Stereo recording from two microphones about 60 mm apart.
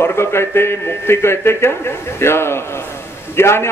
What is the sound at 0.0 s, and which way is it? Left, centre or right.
A man's voice, left.